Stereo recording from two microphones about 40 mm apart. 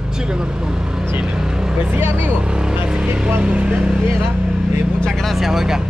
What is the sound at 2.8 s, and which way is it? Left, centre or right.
Music, right.